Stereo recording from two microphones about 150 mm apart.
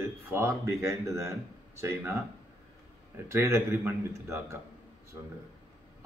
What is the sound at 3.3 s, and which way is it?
A man's voice, 15° right (ahead or behind).